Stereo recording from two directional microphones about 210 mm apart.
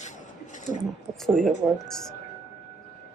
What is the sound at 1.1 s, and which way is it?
Speech, centre (ahead or behind).